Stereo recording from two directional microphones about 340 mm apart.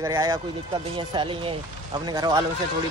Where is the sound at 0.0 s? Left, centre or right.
Centre.